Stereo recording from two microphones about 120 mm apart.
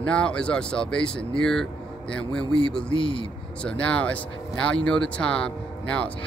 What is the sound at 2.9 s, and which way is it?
Speech, 45° left (ahead or behind).